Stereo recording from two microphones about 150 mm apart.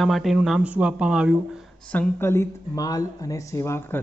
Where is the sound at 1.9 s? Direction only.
15° left (ahead or behind).